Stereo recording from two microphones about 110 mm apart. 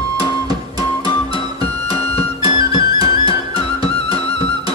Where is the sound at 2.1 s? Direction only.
60° left (ahead or behind).